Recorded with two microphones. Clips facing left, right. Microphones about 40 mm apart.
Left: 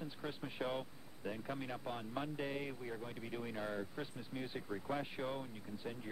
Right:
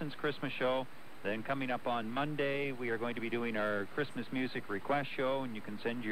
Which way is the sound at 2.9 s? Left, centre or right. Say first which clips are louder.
Right 9 dB; right.